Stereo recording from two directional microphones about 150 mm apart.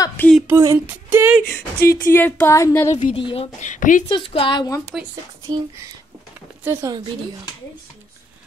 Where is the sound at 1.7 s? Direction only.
75° left (ahead or behind).